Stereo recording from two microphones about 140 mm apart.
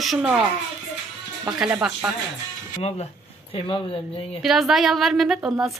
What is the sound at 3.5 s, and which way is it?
Speech, 40° left (ahead or behind).